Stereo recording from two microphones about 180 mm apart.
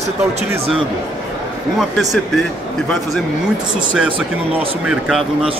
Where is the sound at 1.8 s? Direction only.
Centre (ahead or behind).